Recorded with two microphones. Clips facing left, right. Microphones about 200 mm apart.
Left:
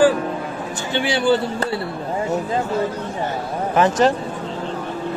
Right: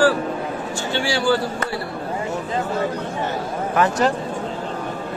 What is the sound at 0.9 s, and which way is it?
Speech, 20° left (ahead or behind).